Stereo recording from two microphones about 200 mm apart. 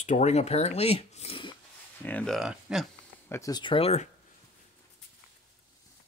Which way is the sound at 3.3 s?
15° left (ahead or behind).